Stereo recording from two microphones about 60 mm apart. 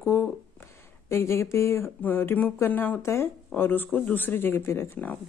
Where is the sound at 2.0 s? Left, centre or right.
Left.